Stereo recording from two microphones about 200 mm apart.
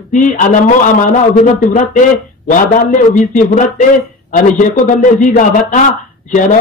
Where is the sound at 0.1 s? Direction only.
40° left (ahead or behind).